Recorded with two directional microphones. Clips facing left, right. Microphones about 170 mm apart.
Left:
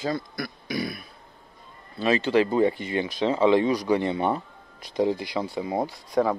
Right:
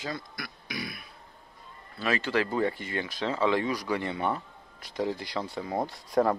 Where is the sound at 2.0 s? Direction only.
20° left (ahead or behind).